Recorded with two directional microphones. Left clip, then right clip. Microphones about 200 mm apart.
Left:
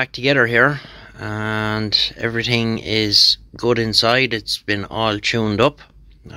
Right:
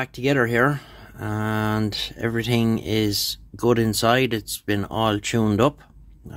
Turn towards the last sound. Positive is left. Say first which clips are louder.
# left 3 dB
turn(degrees=-15)  # may be behind; listen again after turning